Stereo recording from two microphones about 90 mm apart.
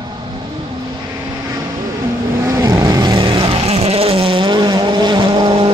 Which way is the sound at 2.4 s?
45° right (ahead or behind).